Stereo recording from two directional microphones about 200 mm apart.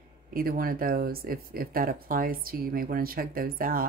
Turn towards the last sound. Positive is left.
turn(degrees=-45)  # may be behind; listen again after turning